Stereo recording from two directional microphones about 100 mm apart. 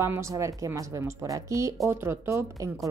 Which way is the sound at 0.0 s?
30° right (ahead or behind).